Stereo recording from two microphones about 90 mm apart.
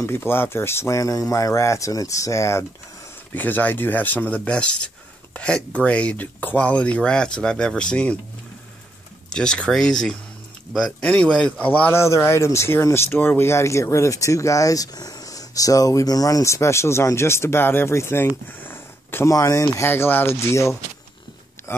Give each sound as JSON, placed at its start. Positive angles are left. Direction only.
{"t": 0.0, "sound": "speech", "side_deg": 25}
{"t": 3.3, "sound": "speech", "side_deg": 20}
{"t": 9.3, "sound": "speech", "side_deg": 10}
{"t": 11.9, "sound": "speech", "side_deg": 30}
{"t": 19.2, "sound": "speech", "side_deg": 35}
{"t": 19.9, "sound": "speech", "side_deg": 25}